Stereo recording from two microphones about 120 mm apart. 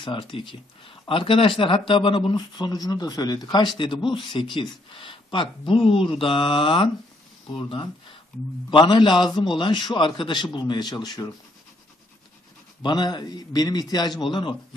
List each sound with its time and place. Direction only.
0.0 s a man's voice: 45° left (ahead or behind)
12.8 s a man's voice: 35° left (ahead or behind)